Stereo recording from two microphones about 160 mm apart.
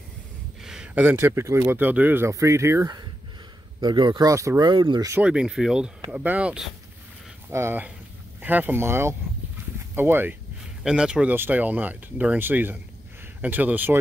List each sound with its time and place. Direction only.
0.6 s speech: 5° right (ahead or behind); by 5.1 s 25° right (ahead or behind)
5.1 s speech: 5° right (ahead or behind)